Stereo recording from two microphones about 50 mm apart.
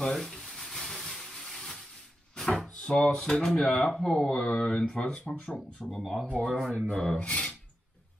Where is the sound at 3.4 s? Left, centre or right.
Centre.